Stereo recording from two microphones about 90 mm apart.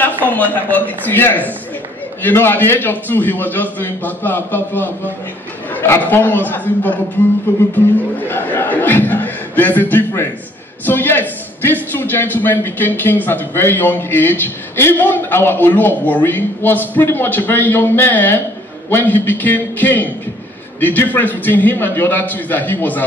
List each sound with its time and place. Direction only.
0.0 s a man's voice: 20° left (ahead or behind)